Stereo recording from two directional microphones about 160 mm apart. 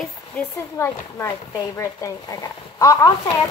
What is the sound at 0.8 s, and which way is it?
Speech, 20° left (ahead or behind).